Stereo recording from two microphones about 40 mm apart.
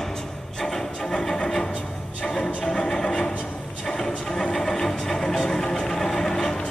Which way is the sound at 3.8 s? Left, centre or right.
Centre.